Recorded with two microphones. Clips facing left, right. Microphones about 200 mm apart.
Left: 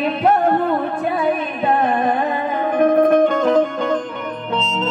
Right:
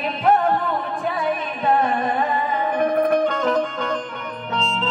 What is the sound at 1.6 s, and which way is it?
Music, 55° left (ahead or behind).